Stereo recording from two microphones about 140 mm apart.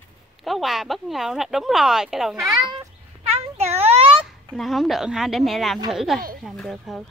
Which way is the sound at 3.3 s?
50° right (ahead or behind).